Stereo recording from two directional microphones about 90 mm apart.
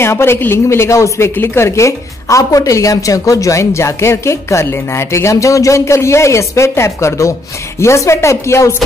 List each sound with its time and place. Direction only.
0.0 s a woman's voice: 25° left (ahead or behind)